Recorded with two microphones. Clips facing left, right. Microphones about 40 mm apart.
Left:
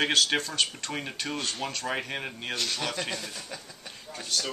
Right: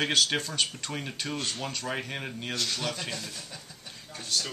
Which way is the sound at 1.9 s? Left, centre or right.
Centre.